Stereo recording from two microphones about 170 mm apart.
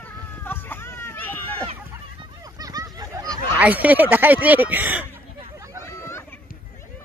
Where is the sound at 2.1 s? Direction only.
20° right (ahead or behind).